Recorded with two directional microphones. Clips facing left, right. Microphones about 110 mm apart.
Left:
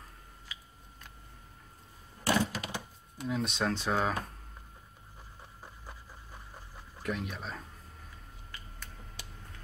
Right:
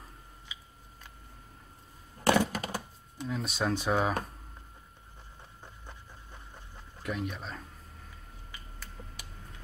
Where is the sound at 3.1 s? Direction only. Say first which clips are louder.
Left 2 dB; centre (ahead or behind).